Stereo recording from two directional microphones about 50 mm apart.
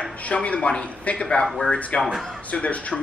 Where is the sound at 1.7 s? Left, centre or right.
Left.